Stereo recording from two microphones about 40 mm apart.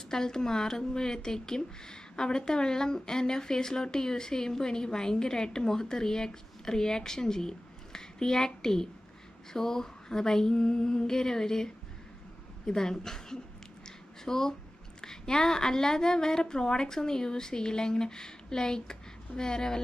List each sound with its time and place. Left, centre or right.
0.1 s speech: centre
13.8 s a sound: centre
15.0 s speech: centre